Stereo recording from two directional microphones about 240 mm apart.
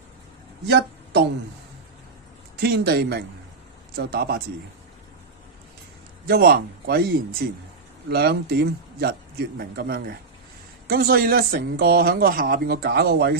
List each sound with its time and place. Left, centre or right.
0.7 s speech: right
2.5 s speech: right
6.2 s speech: right